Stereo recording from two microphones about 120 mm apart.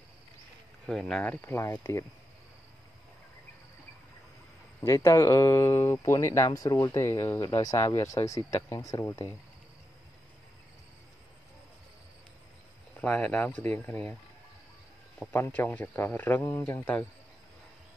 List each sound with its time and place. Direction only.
0.8 s speech: 5° left (ahead or behind); by 2.0 s 25° left (ahead or behind)
4.8 s speech: 25° left (ahead or behind)
13.0 s speech: 10° left (ahead or behind)
15.1 s speech: 15° left (ahead or behind)